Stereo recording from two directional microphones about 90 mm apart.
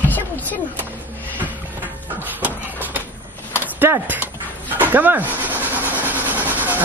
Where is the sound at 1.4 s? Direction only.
20° right (ahead or behind).